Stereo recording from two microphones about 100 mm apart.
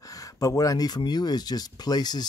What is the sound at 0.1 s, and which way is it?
Speech, 35° left (ahead or behind).